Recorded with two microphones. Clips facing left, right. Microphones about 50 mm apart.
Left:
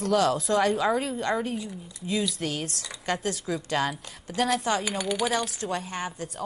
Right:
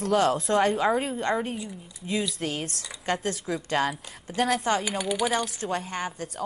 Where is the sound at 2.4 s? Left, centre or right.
Right.